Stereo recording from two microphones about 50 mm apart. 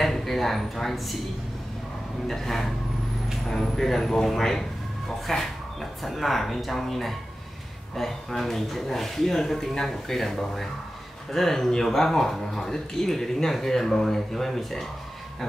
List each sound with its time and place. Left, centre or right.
0.0 s speech: centre
2.2 s speech: centre